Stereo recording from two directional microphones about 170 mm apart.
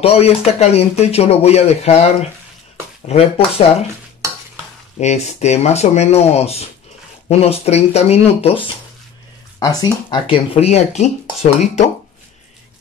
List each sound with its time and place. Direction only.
0.0 s speech: 35° left (ahead or behind)
5.0 s speech: 40° left (ahead or behind)
9.6 s speech: 20° left (ahead or behind); by 11.9 s 40° left (ahead or behind)